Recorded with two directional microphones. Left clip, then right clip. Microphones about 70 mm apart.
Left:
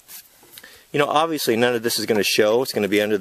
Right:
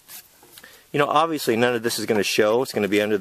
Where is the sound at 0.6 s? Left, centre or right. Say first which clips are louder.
Left 1 dB; left.